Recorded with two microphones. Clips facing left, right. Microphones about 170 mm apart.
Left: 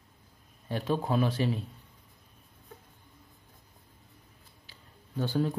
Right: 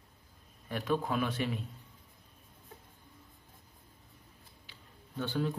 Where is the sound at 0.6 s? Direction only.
30° left (ahead or behind).